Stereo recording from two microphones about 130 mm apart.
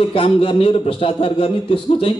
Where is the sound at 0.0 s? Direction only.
45° left (ahead or behind).